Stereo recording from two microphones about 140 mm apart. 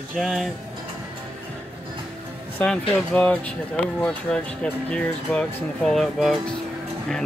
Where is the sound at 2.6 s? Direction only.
15° left (ahead or behind).